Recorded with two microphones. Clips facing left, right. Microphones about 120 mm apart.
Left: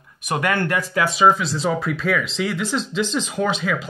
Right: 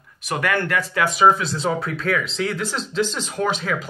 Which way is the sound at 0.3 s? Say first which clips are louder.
Left 1 dB; 20° left (ahead or behind).